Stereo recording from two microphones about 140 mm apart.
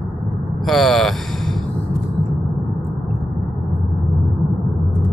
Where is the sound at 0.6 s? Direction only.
Centre (ahead or behind).